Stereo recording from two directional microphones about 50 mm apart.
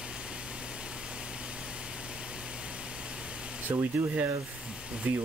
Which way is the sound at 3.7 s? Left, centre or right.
Right.